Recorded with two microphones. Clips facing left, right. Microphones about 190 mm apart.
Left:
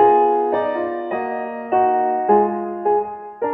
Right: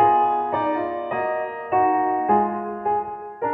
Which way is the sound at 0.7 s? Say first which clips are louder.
Left 2 dB; 5° right (ahead or behind).